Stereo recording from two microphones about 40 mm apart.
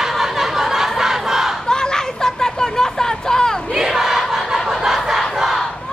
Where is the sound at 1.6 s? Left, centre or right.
Centre.